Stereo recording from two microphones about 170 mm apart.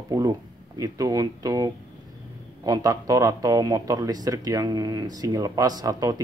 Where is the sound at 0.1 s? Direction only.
20° right (ahead or behind).